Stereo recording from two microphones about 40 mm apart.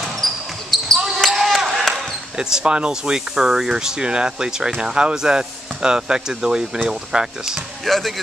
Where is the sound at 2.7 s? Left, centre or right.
Right.